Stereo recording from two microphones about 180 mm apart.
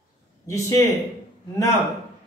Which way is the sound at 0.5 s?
15° left (ahead or behind).